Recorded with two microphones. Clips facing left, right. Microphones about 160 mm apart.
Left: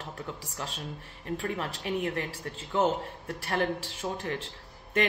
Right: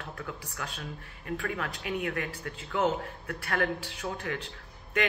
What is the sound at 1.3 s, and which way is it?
A man's voice, 30° left (ahead or behind).